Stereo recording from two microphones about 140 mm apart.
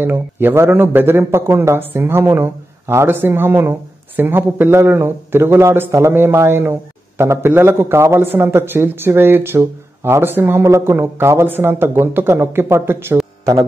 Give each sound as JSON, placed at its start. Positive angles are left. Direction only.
{"t": 0.0, "sound": "a man's voice", "side_deg": -15}